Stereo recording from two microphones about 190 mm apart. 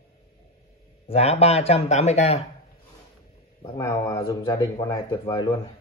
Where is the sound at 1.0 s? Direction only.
35° left (ahead or behind).